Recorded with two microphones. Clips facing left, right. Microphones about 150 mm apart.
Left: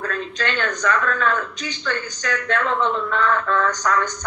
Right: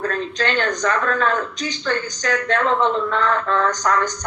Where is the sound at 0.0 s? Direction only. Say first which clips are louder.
Right 3 dB; 35° right (ahead or behind).